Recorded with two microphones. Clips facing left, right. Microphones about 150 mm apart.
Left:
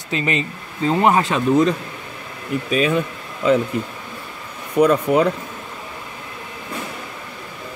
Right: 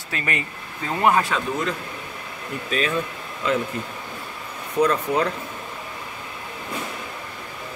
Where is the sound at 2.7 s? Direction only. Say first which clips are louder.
Left 5 dB; 15° left (ahead or behind).